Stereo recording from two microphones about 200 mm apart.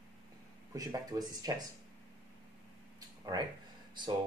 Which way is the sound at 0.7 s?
20° right (ahead or behind).